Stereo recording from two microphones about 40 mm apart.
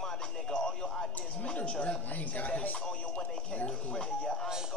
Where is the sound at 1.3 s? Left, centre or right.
Left.